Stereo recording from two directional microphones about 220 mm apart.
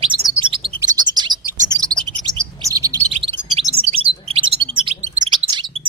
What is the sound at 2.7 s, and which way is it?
Bird, 15° right (ahead or behind).